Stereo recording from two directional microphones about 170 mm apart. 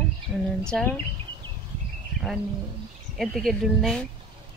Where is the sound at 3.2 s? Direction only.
Centre (ahead or behind).